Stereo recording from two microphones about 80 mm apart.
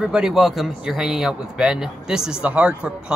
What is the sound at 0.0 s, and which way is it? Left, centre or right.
A man's voice, centre.